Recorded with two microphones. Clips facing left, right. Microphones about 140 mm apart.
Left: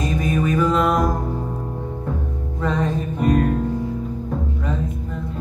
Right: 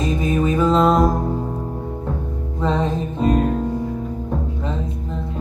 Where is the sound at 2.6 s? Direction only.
20° right (ahead or behind).